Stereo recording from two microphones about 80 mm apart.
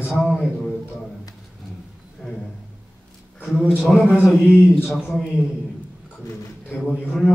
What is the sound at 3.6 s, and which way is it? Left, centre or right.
Speech, centre.